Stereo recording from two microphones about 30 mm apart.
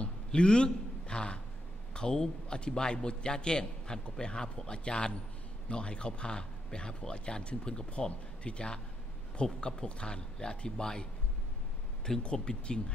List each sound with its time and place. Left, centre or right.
0.3 s a sound: left
2.0 s a man's voice: left
12.2 s speech: left